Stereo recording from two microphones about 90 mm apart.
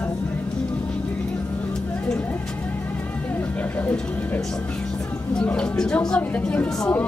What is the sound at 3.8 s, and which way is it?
Speech, 15° left (ahead or behind).